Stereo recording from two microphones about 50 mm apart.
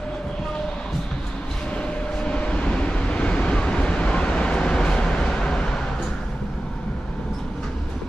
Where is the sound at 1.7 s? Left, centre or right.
Left.